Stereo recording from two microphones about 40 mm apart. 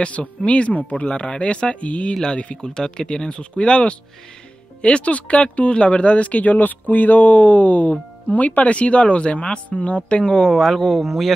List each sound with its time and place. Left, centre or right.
0.0 s speech: left
0.7 s speech: left
1.0 s speech: left
2.6 s speech: centre
10.5 s speech: centre